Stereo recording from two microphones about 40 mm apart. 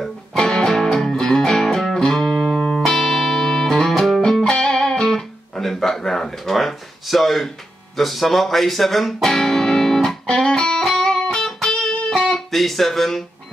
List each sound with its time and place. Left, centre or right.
0.3 s music: centre
5.6 s a sound: centre
8.0 s speech: centre
10.2 s music: left
12.4 s speech: centre